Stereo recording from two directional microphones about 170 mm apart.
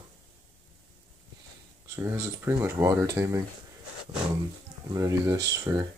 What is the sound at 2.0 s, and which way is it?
Speech, 15° right (ahead or behind).